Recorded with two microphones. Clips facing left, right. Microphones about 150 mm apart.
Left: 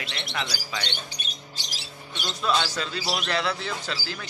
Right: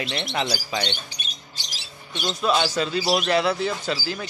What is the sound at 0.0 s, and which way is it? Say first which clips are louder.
Speech: right 6 dB; 25° right (ahead or behind).